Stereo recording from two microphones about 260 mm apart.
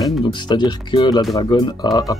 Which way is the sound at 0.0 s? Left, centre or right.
Centre.